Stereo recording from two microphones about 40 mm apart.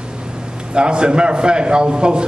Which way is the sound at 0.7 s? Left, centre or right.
Right.